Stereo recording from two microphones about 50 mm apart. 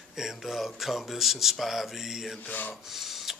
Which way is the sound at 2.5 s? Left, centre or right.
Left.